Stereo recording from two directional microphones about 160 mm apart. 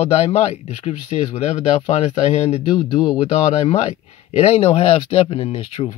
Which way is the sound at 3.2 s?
40° left (ahead or behind).